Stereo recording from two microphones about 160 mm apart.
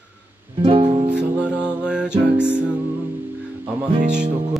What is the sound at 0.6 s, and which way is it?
Music, 30° right (ahead or behind).